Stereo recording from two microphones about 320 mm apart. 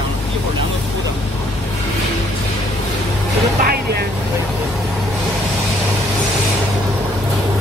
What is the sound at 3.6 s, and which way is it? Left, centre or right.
Speech, right.